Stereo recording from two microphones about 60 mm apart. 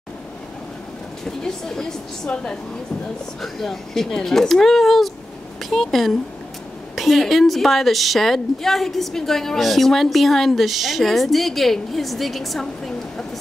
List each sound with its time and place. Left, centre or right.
1.2 s speech: centre
2.2 s a woman's voice: left
3.5 s a woman's voice: centre